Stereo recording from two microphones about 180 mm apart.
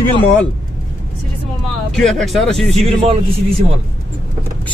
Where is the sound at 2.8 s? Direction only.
35° right (ahead or behind).